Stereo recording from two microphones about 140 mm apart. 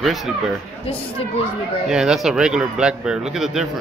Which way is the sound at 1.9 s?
5° right (ahead or behind).